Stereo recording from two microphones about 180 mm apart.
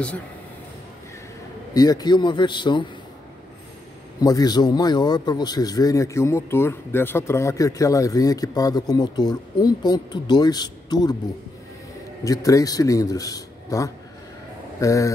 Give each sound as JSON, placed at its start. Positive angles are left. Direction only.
{"t": 1.7, "sound": "a man's voice", "side_deg": 20}
{"t": 4.2, "sound": "a man's voice", "side_deg": 20}
{"t": 12.3, "sound": "a man's voice", "side_deg": 20}